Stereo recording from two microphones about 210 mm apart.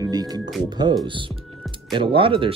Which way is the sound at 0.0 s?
20° right (ahead or behind).